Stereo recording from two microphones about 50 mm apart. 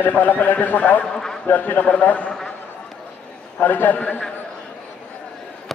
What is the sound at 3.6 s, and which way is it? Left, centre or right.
Speech, left.